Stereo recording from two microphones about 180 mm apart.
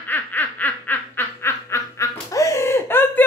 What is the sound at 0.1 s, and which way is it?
Baby laughter, 10° left (ahead or behind).